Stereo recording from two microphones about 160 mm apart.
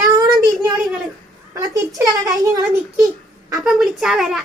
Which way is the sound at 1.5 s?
20° right (ahead or behind).